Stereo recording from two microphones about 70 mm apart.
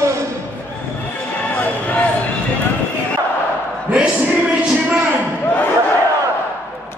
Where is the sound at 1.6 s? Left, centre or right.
Left.